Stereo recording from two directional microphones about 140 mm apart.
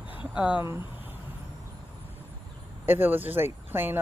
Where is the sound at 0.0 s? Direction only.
10° right (ahead or behind).